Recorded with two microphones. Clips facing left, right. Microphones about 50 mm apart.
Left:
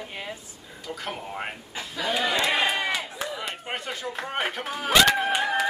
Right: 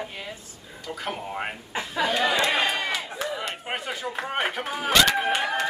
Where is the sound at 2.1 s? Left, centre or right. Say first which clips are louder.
Even; centre.